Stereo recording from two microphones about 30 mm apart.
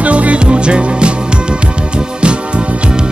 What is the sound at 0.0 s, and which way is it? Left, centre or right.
Music, right.